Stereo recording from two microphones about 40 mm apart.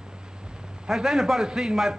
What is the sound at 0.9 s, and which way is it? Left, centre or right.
Speech, centre.